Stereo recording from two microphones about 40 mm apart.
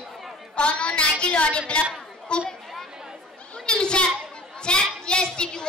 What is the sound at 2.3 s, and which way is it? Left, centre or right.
Speech, left.